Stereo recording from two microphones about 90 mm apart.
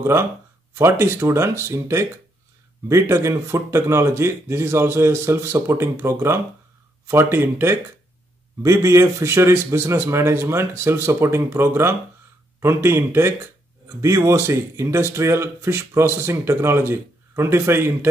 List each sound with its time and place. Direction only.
0.0 s speech: 30° right (ahead or behind)